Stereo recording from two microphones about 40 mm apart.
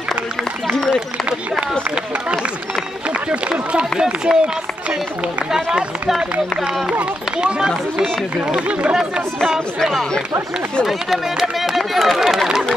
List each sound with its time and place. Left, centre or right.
3.3 s speech: right
5.5 s speech: centre
7.3 s speech: right
10.9 s speech: centre